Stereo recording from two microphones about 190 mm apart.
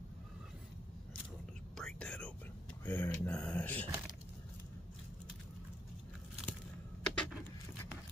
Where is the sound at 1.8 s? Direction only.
5° left (ahead or behind).